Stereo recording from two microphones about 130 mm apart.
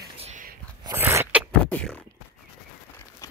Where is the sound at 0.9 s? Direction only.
20° right (ahead or behind).